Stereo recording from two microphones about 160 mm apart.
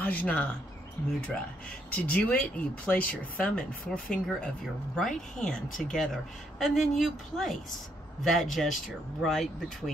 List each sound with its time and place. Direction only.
0.0 s speech: 10° left (ahead or behind)
2.0 s speech: 10° left (ahead or behind)